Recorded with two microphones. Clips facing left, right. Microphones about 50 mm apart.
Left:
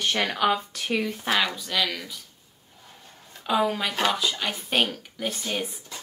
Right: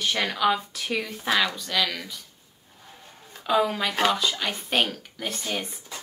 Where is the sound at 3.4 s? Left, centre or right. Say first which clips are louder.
Right 1 dB; centre.